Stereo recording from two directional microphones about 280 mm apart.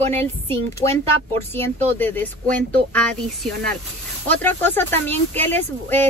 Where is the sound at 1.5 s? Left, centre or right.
Centre.